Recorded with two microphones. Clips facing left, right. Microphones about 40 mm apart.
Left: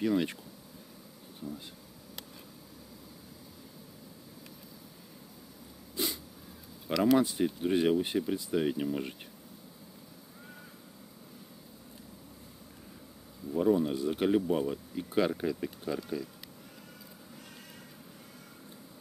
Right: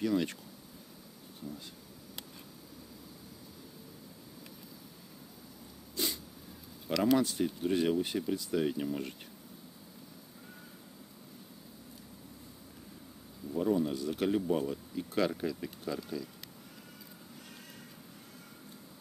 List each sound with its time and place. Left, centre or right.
0.0 s speech: centre
6.0 s a sound: centre
6.9 s speech: centre
13.5 s speech: centre